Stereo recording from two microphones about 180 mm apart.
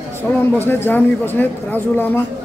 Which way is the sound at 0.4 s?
10° left (ahead or behind).